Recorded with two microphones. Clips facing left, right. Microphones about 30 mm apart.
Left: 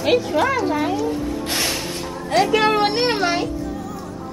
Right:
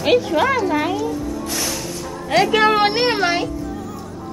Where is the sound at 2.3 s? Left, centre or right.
Centre.